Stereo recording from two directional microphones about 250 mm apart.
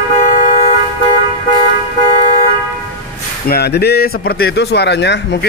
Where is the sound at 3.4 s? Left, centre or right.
Left.